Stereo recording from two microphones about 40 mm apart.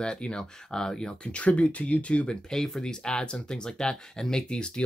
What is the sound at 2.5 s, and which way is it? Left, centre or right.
Speech, centre.